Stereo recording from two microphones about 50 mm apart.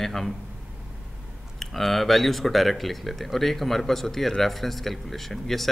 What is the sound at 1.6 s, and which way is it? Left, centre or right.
A man's voice, centre.